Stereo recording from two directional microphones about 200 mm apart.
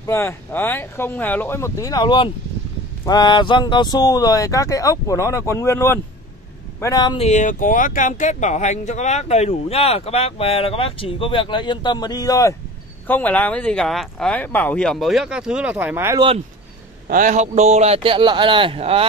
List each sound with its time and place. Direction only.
0.0 s speech: 15° left (ahead or behind)
7.2 s speech: 40° left (ahead or behind); by 16.3 s 15° right (ahead or behind)
17.1 s a man's voice: 40° right (ahead or behind)